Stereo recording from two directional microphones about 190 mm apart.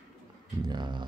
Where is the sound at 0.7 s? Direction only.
25° right (ahead or behind).